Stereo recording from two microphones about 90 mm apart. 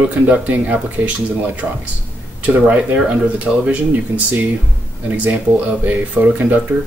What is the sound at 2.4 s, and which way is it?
Speech, 15° right (ahead or behind).